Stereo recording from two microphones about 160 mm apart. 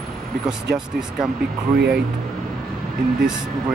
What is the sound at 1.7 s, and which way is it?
Speech, 90° right.